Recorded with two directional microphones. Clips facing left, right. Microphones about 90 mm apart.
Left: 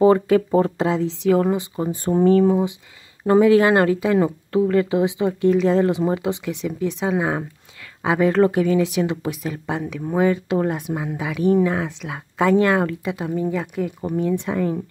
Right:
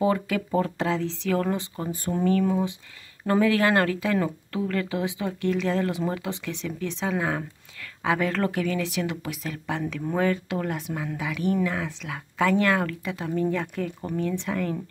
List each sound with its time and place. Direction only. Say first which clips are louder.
0.0 s speech: left 9 dB; 35° left (ahead or behind); by 1.9 s 15° left (ahead or behind)
1.9 s speech: left 8 dB; 30° left (ahead or behind)